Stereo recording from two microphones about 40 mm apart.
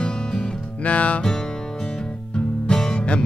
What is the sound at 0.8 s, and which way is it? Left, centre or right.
Music, left.